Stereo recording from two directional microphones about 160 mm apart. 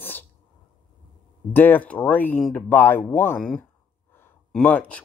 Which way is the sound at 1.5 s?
10° left (ahead or behind).